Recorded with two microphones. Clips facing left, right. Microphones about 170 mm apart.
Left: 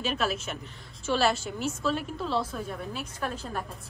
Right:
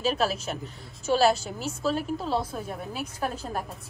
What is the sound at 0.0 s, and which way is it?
A woman's voice, 35° right (ahead or behind).